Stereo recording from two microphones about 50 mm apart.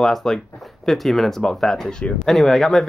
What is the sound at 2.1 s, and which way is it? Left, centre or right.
Speech, centre.